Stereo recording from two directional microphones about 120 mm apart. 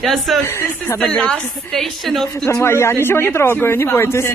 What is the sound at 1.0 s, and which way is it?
Speech, 10° left (ahead or behind).